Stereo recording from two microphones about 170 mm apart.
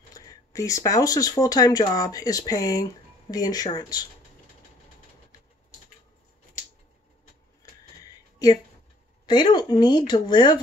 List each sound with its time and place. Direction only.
0.1 s speech: 20° left (ahead or behind)
7.6 s a sound: 20° left (ahead or behind)
9.2 s speech: 25° left (ahead or behind)